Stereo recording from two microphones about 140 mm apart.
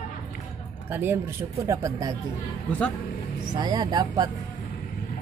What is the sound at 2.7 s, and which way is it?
Speech, 10° left (ahead or behind).